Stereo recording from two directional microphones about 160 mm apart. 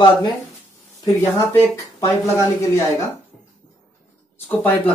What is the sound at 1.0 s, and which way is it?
Speech, 15° left (ahead or behind).